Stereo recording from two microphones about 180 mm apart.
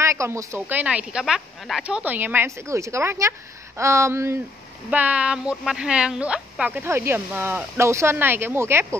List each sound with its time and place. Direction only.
0.0 s speech: 15° right (ahead or behind)